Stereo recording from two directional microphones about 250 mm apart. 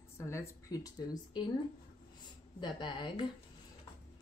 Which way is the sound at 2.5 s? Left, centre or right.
Centre.